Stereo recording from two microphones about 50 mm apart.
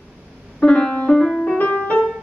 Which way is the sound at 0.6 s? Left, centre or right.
Centre.